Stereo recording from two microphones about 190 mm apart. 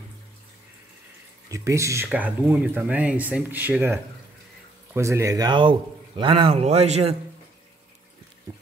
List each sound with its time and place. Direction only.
1.5 s a man's voice: 15° right (ahead or behind); by 7.2 s 30° right (ahead or behind)
8.5 s boat: 20° right (ahead or behind)